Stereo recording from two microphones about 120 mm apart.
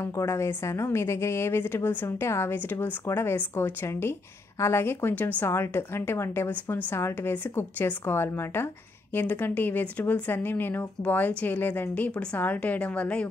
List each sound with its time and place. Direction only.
0.0 s a woman's voice: 25° left (ahead or behind)